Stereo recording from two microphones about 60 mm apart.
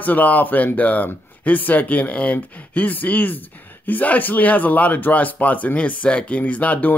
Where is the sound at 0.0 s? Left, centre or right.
Left.